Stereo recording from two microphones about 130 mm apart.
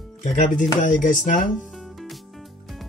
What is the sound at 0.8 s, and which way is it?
Speech, 85° left.